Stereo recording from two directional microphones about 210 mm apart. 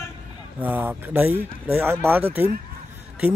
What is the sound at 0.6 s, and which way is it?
Speech, 10° right (ahead or behind).